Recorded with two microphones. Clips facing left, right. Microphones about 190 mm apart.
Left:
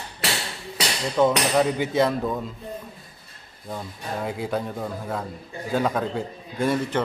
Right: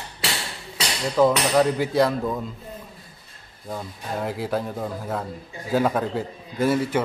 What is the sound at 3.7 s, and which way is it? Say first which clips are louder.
A man's voice: right 1 dB; centre (ahead or behind).